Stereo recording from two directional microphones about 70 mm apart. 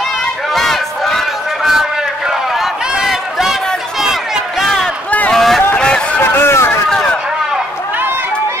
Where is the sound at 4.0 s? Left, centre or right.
Centre.